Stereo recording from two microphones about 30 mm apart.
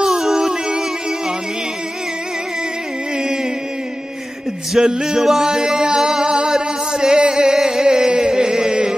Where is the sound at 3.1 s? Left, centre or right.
Right.